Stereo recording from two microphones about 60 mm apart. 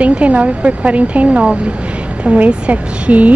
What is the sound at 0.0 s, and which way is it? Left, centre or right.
A woman's voice, right.